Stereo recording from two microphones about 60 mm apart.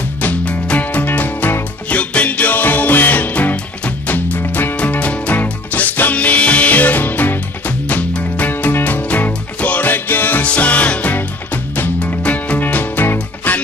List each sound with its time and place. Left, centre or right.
0.2 s music: left
4.7 s music: left
10.4 s music: left
12.0 s music: left